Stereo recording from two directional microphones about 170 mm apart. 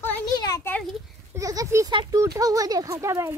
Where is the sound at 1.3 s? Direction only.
20° right (ahead or behind).